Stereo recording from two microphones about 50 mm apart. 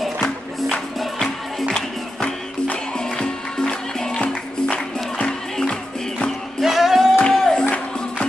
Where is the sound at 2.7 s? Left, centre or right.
Centre.